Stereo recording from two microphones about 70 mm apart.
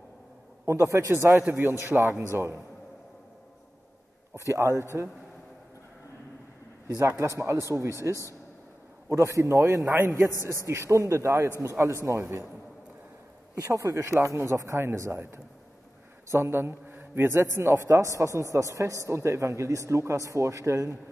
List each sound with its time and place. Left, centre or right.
0.7 s a man's voice: right
4.5 s a man's voice: right
7.0 s a man's voice: right
13.6 s a man's voice: right
14.0 s a man's voice: right